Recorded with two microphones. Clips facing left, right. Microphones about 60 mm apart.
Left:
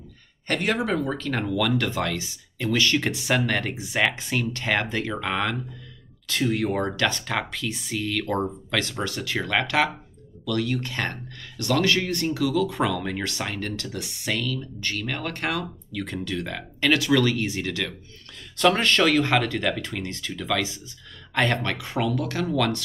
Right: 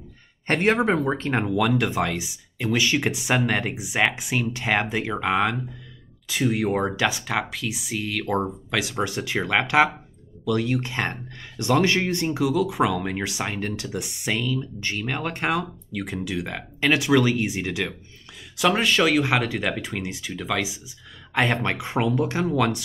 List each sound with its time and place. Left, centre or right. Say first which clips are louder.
0.5 s speech: right 4 dB; right; by 22.8 s centre